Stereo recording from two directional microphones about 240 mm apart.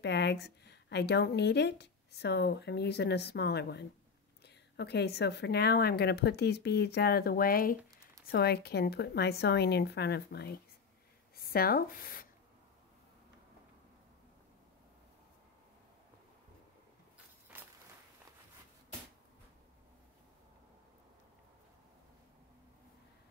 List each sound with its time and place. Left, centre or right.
0.0 s a woman's voice: left